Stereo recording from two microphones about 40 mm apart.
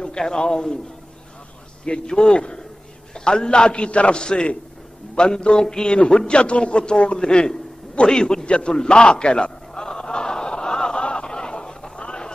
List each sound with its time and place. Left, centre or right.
0.0 s a man's voice: centre
1.9 s a man's voice: left
5.1 s a sound: centre